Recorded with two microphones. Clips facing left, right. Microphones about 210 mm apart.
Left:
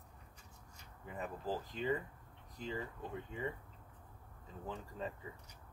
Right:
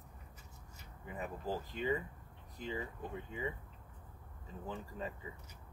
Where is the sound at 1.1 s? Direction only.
5° right (ahead or behind).